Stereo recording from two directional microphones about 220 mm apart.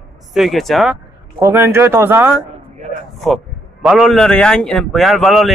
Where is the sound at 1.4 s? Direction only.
10° right (ahead or behind).